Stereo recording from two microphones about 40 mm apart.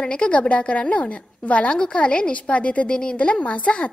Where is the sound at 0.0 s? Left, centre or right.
Left.